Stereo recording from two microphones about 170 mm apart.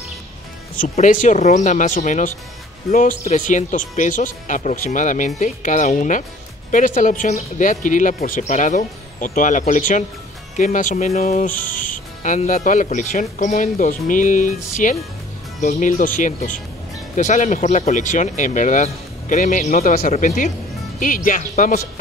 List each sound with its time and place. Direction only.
0.9 s speech: 50° left (ahead or behind)